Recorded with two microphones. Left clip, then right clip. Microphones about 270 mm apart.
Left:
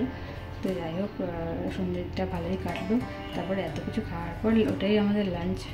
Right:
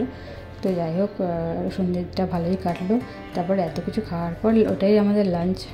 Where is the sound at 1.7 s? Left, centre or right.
Centre.